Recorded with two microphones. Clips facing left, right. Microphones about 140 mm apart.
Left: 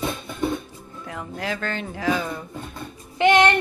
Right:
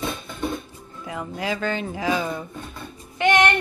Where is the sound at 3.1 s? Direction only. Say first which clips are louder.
Left 2 dB; 20° left (ahead or behind).